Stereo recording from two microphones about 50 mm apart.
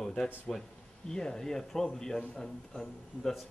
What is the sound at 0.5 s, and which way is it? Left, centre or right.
A man's voice, centre.